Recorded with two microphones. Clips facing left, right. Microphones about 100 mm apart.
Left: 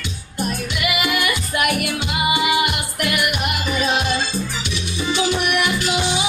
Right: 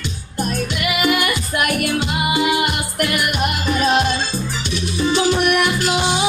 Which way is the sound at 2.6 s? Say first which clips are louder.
Right 2 dB; 45° right (ahead or behind).